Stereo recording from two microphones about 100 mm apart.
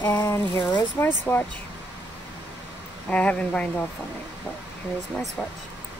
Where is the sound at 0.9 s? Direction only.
20° left (ahead or behind).